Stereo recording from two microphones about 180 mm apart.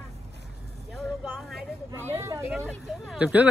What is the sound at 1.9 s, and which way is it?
Speech, 15° right (ahead or behind).